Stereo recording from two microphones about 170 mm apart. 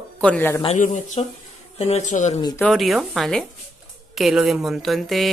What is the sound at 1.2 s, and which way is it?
Speech, 35° left (ahead or behind).